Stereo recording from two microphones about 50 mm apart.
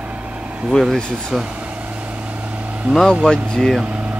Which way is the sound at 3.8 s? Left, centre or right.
Right.